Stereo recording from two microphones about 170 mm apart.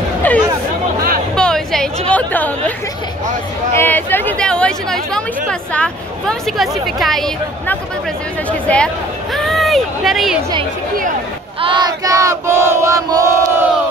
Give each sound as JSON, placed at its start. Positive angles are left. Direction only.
{"t": 1.3, "sound": "chatter", "side_deg": 5}
{"t": 3.7, "sound": "speech", "side_deg": 10}
{"t": 11.6, "sound": "battle cry", "side_deg": -25}